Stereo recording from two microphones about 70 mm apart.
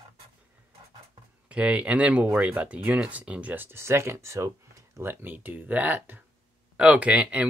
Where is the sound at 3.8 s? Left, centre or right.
Right.